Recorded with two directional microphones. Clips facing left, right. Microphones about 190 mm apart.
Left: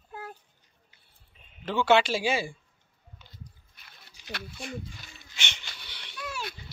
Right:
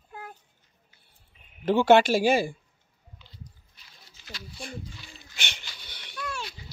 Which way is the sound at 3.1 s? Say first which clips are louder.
Right 1 dB; 50° left (ahead or behind).